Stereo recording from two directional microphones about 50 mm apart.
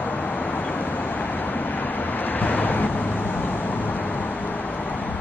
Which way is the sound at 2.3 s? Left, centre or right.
Left.